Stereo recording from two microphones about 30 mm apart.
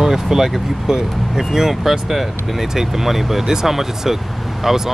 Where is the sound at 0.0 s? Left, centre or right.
Centre.